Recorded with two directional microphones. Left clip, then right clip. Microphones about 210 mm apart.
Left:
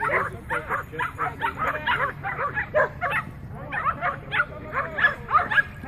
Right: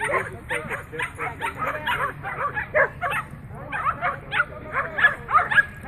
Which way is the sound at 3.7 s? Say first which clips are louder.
Right 1 dB; 40° left (ahead or behind).